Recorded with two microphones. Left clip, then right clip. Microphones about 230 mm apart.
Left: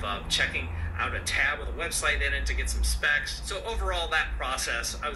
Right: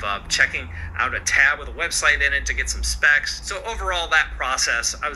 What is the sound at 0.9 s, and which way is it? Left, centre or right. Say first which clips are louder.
Speech: right 9 dB; right.